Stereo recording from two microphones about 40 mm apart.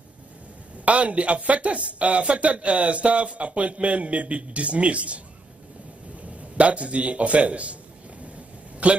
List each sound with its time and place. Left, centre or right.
0.8 s speech: right
6.5 s speech: right
8.8 s speech: right